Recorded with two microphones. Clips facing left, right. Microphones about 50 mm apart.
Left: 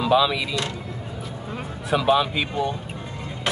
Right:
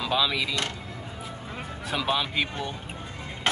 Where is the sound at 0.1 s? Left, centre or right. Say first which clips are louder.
Left 6 dB; centre.